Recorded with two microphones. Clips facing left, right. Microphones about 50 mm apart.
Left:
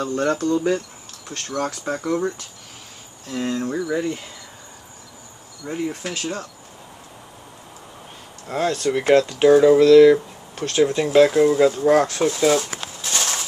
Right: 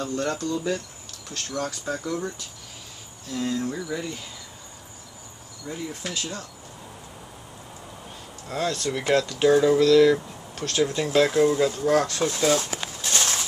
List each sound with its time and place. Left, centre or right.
0.0 s speech: left
3.3 s speech: left
5.7 s speech: left
8.5 s speech: left; by 11.6 s centre
11.9 s speech: left
12.2 s speech: centre
13.0 s a sound: centre